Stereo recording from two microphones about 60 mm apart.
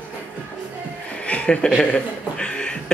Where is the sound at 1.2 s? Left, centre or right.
Centre.